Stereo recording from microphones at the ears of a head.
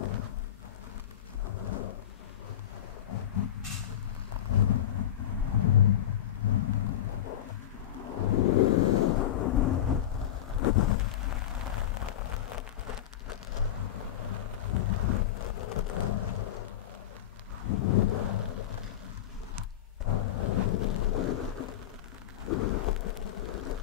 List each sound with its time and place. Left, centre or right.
1.6 s thunder: left
3.1 s a sound: left
4.5 s vehicle: left
7.9 s thunder: left
17.6 s thunder: left
20.1 s thunder: left